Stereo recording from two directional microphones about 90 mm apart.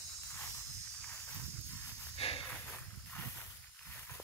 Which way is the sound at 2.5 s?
15° left (ahead or behind).